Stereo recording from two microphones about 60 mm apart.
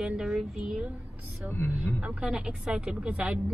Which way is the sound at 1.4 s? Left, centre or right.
Left.